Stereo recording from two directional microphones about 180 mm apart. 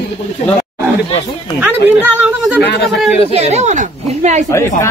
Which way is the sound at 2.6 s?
70° left (ahead or behind).